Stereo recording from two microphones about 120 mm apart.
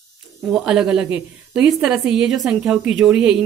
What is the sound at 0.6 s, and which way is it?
A woman's voice, 5° right (ahead or behind).